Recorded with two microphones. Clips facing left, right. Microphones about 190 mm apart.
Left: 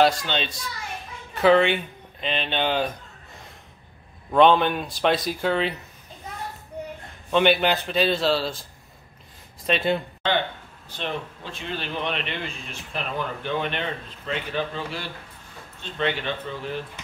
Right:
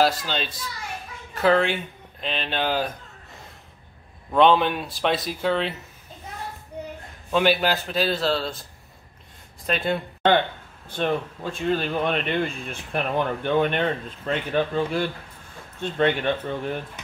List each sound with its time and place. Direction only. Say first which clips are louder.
0.0 s a man's voice: left 1 dB; 5° right (ahead or behind)
4.3 s a man's voice: left 1 dB; centre (ahead or behind)
7.2 s a man's voice: left 1 dB; 5° right (ahead or behind)
9.7 s a man's voice: left 2 dB; centre (ahead or behind)
10.9 s speech: right 6 dB; 50° right (ahead or behind)